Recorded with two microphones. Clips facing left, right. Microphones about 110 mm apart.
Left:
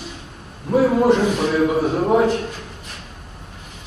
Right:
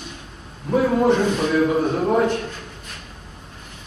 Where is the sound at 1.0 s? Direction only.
10° left (ahead or behind).